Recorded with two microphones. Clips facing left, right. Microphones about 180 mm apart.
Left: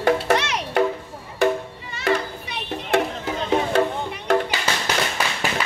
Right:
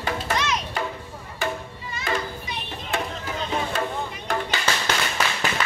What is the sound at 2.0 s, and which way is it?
Music, 65° left (ahead or behind).